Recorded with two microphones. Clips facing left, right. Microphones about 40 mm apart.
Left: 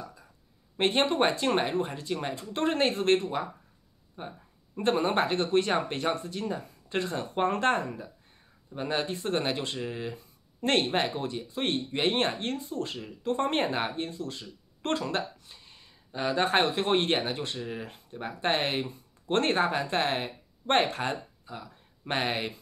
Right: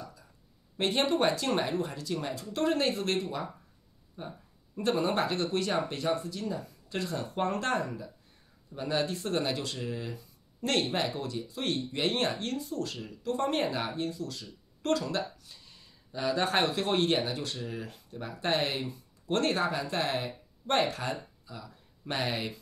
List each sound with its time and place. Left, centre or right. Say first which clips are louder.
0.7 s speech: left 2 dB; left